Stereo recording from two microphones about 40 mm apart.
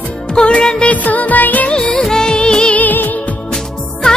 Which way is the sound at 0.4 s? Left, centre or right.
Left.